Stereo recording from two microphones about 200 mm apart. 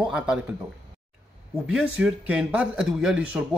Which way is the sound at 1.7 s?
5° right (ahead or behind).